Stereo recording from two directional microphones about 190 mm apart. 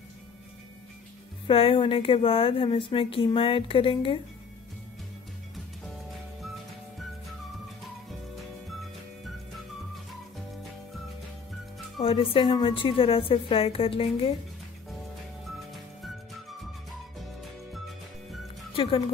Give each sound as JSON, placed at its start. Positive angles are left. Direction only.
{"t": 1.5, "sound": "a woman's voice", "side_deg": 30}
{"t": 12.0, "sound": "a woman's voice", "side_deg": 30}
{"t": 18.8, "sound": "a woman's voice", "side_deg": 30}